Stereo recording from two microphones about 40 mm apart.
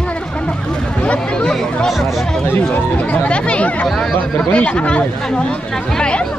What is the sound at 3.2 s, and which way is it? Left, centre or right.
Speech, left.